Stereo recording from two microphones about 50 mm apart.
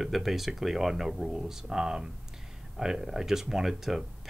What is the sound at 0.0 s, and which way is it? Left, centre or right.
Speech, centre.